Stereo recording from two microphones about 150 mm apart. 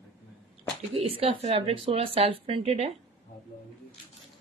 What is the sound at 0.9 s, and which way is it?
Speech, 40° right (ahead or behind).